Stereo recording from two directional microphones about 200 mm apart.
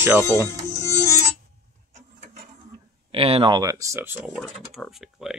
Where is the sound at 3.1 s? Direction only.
30° right (ahead or behind); by 4.4 s 10° right (ahead or behind).